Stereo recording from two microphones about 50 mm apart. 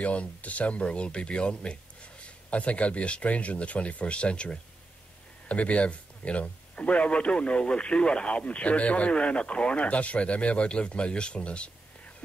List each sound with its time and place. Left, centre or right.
0.0 s a man's voice: left